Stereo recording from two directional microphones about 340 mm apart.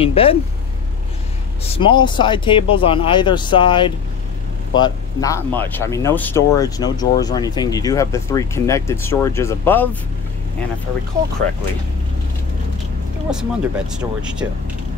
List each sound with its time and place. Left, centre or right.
0.0 s speech: centre
1.6 s speech: centre
13.3 s speech: centre